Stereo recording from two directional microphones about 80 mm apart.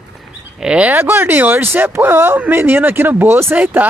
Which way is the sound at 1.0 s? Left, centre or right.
Right.